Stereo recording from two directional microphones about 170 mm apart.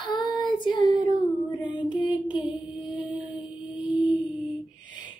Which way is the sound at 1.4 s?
25° left (ahead or behind).